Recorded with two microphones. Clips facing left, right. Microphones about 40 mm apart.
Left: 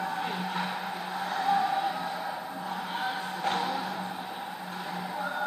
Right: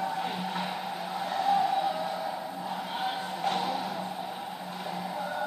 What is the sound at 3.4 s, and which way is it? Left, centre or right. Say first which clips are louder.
Vehicle: even; left.